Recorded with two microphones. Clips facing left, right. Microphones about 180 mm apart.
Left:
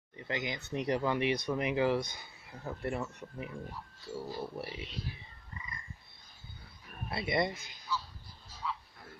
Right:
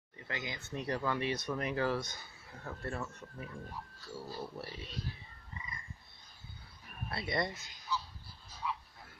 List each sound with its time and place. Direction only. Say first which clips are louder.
0.3 s speech: left 5 dB; 20° left (ahead or behind)
7.1 s speech: left 4 dB; 15° left (ahead or behind)
8.6 s frog: even; 15° right (ahead or behind)